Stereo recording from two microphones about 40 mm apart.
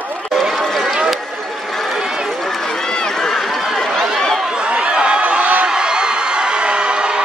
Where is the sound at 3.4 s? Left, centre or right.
Centre.